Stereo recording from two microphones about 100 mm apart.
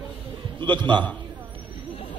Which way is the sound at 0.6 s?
50° right (ahead or behind).